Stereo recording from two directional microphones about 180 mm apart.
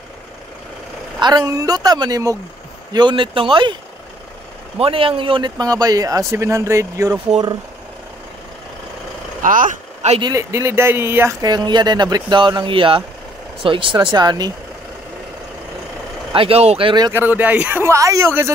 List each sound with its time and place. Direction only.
1.2 s speech: 20° right (ahead or behind)
4.7 s speech: 30° right (ahead or behind)
9.4 s speech: 50° right (ahead or behind)
10.2 s speech: 15° right (ahead or behind)
16.3 s speech: 35° right (ahead or behind)
17.2 s a man's voice: 10° right (ahead or behind)